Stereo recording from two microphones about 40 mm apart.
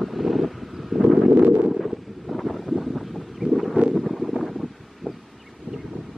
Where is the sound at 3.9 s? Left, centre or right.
Centre.